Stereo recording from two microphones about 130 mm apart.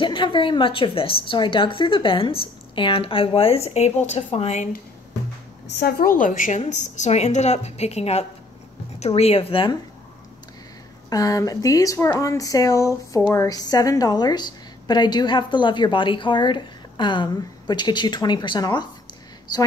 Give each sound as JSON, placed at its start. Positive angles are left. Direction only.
{"t": 0.0, "sound": "a woman's voice", "side_deg": 40}
{"t": 6.0, "sound": "a woman's voice", "side_deg": 90}
{"t": 6.6, "sound": "a woman's voice", "side_deg": 65}
{"t": 11.1, "sound": "a woman's voice", "side_deg": 30}